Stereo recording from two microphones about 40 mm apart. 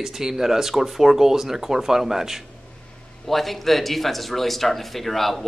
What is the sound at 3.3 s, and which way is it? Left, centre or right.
Speech, centre.